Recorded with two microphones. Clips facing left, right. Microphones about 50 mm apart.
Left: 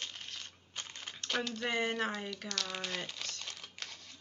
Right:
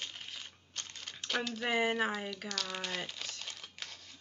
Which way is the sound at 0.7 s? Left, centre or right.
Centre.